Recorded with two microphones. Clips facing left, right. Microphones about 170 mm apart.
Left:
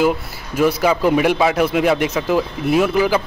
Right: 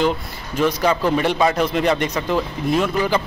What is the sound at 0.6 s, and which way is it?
A man's voice, 10° left (ahead or behind).